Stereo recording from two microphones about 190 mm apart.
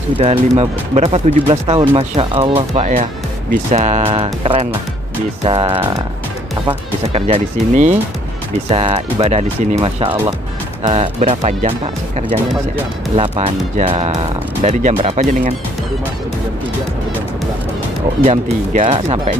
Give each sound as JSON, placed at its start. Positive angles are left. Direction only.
{"t": 0.2, "sound": "speech", "side_deg": -35}
{"t": 7.1, "sound": "speech", "side_deg": -30}
{"t": 18.2, "sound": "speech", "side_deg": -35}